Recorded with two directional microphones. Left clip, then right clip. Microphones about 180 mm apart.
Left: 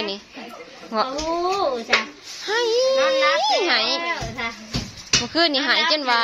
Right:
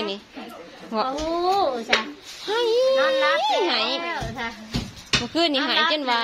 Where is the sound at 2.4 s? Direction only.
Centre (ahead or behind).